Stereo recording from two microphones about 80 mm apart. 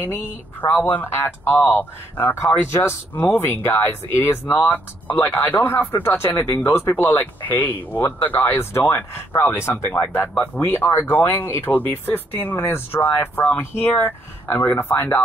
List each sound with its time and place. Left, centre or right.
0.0 s speech: left